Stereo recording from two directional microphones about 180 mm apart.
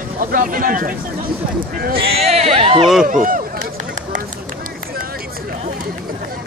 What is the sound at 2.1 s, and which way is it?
Speech, 35° right (ahead or behind).